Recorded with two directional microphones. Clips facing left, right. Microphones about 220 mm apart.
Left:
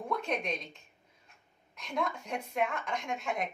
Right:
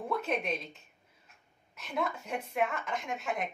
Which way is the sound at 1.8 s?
5° right (ahead or behind).